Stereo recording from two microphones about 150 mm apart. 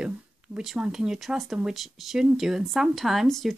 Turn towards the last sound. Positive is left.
turn(degrees=0)  # may be behind; listen again after turning